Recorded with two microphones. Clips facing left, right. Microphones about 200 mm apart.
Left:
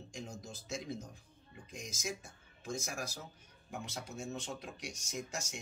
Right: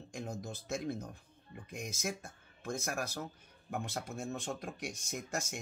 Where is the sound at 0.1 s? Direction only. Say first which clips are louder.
Right 6 dB; 55° right (ahead or behind).